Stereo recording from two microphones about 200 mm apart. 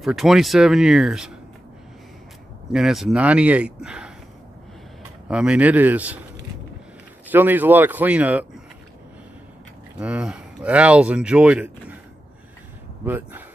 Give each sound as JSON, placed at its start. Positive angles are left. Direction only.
{"t": 0.0, "sound": "speech", "side_deg": 0}
{"t": 2.7, "sound": "speech", "side_deg": 0}
{"t": 5.3, "sound": "speech", "side_deg": -5}
{"t": 7.2, "sound": "speech", "side_deg": -10}
{"t": 9.9, "sound": "speech", "side_deg": -5}
{"t": 13.0, "sound": "speech", "side_deg": -10}